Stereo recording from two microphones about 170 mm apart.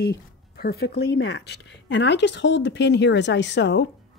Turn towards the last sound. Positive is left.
turn(degrees=90)